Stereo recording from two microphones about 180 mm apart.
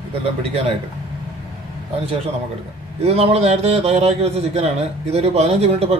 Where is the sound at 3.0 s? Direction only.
35° right (ahead or behind).